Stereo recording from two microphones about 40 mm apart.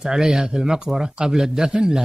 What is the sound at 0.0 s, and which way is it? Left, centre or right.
Speech, centre.